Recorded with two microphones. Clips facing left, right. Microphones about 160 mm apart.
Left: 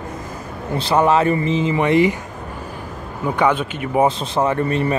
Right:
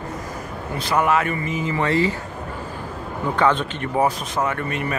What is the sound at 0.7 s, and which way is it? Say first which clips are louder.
Speech: left 4 dB; 30° left (ahead or behind).